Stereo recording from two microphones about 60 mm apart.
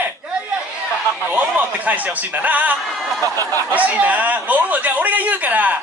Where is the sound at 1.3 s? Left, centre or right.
Right.